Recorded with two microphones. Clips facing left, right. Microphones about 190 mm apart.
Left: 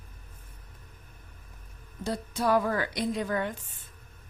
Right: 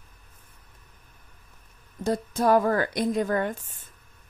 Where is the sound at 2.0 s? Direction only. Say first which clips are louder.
Right 5 dB; 45° right (ahead or behind).